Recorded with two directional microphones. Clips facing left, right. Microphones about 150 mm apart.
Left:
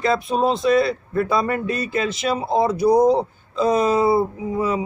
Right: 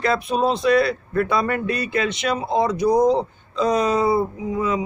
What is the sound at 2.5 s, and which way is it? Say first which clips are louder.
A man's voice: left 2 dB; 5° left (ahead or behind).